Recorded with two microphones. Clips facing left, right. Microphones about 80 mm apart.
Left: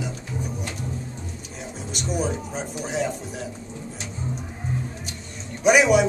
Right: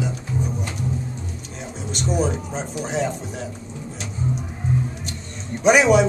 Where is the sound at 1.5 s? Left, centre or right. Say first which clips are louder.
Right 3 dB; centre.